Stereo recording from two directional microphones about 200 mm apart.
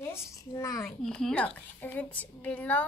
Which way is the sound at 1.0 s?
5° left (ahead or behind).